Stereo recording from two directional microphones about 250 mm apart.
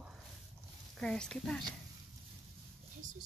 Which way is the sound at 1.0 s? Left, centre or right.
Centre.